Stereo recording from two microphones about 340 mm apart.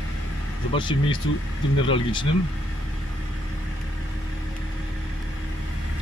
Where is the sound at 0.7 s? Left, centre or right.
Centre.